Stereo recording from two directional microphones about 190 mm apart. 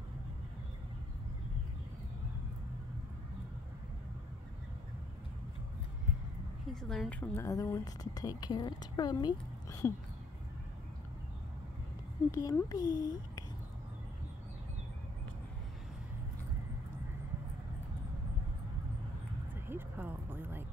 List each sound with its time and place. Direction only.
6.7 s a woman's voice: centre (ahead or behind); by 9.9 s 15° left (ahead or behind)
12.3 s speech: 15° left (ahead or behind)
19.7 s a sound: 10° right (ahead or behind)